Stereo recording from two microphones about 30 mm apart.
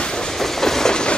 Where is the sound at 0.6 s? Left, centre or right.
Centre.